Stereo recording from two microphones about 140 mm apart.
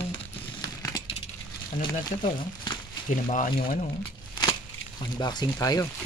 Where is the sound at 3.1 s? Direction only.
60° left (ahead or behind).